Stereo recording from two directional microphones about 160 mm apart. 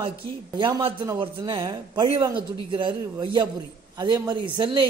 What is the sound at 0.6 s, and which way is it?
A man's voice, 30° right (ahead or behind).